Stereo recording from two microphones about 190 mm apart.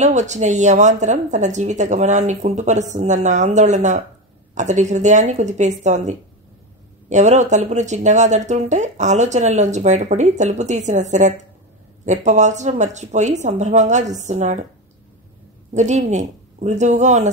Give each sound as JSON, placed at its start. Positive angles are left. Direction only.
{"t": 0.0, "sound": "speech", "side_deg": -40}
{"t": 15.7, "sound": "speech", "side_deg": -40}